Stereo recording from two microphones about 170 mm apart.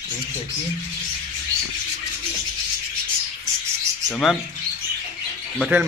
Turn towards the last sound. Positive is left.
turn(degrees=-5)  # may be behind; listen again after turning